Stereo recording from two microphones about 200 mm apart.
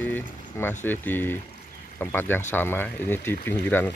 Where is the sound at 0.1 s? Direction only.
10° left (ahead or behind).